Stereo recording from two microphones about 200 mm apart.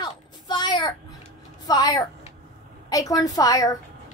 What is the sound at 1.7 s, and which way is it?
A woman's voice, 20° left (ahead or behind).